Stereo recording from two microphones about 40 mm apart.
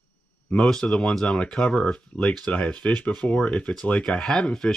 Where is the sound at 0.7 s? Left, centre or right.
Left.